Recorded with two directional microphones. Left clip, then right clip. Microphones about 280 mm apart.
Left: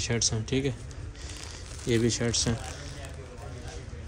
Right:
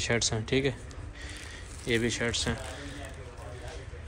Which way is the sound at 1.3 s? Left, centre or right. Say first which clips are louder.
Left 1 dB; centre.